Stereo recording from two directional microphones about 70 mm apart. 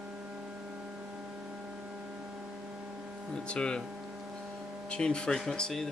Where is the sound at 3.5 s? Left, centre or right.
Centre.